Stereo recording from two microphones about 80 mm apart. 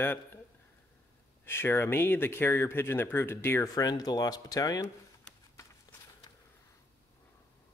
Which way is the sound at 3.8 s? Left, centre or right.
Left.